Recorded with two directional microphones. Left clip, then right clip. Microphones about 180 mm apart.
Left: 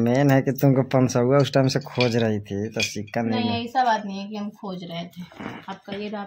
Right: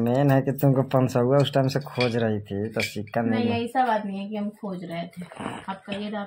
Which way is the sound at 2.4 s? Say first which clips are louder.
Left 1 dB; 15° left (ahead or behind).